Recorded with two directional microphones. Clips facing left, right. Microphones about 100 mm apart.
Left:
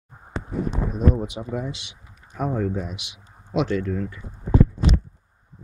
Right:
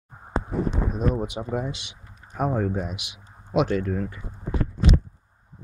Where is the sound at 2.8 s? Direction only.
50° right (ahead or behind).